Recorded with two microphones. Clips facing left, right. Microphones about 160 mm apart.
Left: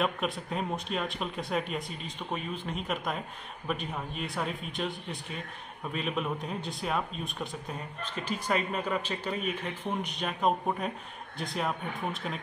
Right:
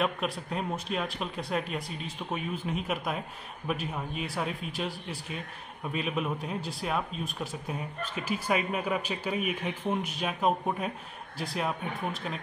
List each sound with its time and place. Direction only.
0.0 s speech: centre (ahead or behind)